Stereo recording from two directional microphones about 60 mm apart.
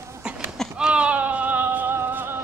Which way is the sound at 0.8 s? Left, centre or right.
Centre.